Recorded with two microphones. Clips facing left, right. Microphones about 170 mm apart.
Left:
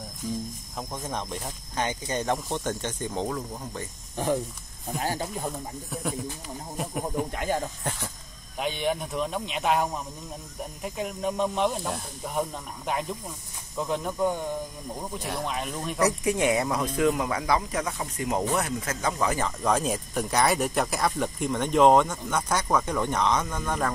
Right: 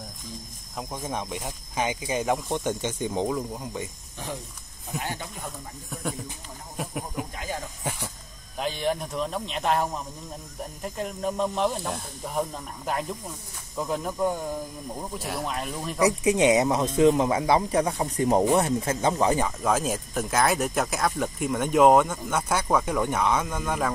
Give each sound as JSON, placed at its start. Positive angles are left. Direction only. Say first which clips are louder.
{"t": 0.7, "sound": "speech", "louder": "right 2 dB", "side_deg": -10}
{"t": 4.9, "sound": "speech", "louder": "left 4 dB", "side_deg": 35}
{"t": 8.5, "sound": "speech", "louder": "even", "side_deg": 0}
{"t": 16.0, "sound": "speech", "louder": "right 3 dB", "side_deg": -15}
{"t": 19.4, "sound": "speech", "louder": "even", "side_deg": -5}